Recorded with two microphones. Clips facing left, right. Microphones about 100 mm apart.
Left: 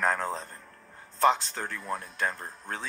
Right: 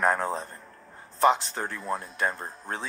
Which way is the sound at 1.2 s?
15° right (ahead or behind).